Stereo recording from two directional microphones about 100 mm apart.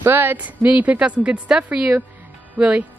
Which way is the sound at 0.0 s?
20° right (ahead or behind).